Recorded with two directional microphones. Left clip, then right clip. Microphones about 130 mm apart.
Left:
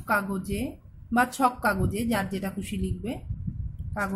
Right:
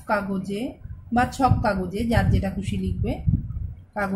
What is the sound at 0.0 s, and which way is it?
Speech, 20° left (ahead or behind).